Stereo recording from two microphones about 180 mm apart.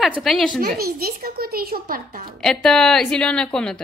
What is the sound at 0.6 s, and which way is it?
Speech, 55° right (ahead or behind).